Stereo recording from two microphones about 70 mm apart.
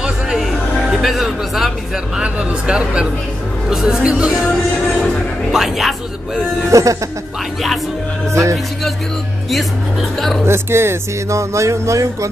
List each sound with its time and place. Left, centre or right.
0.0 s music: centre
2.1 s speech: centre
5.5 s speech: centre
6.7 s speech: right
8.3 s speech: right
10.4 s speech: right